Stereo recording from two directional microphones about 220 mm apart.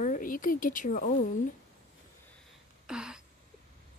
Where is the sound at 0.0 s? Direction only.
35° left (ahead or behind).